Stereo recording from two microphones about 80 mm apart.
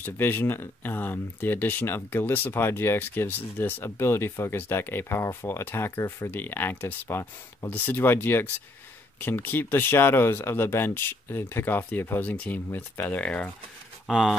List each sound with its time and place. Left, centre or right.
0.0 s speech: left
13.2 s speech: centre
14.0 s speech: centre